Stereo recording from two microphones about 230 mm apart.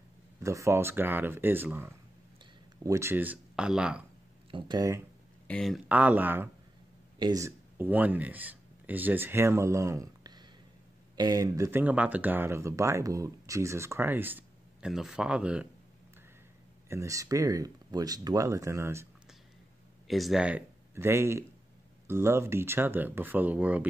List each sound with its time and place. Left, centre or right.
0.4 s speech: centre
4.5 s speech: centre
5.5 s speech: centre
16.9 s speech: centre
20.1 s speech: centre